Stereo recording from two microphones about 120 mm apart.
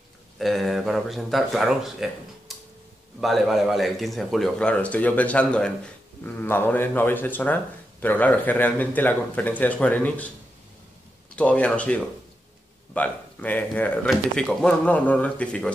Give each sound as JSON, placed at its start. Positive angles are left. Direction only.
{"t": 0.4, "sound": "a man's voice", "side_deg": 0}
{"t": 11.3, "sound": "speech", "side_deg": 10}